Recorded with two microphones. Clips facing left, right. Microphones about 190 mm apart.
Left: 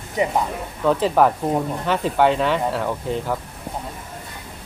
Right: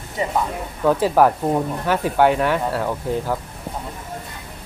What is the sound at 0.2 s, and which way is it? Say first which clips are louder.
Speech: left 3 dB; 15° left (ahead or behind).